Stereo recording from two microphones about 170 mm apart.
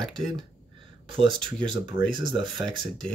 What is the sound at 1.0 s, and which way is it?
Speech, 30° right (ahead or behind).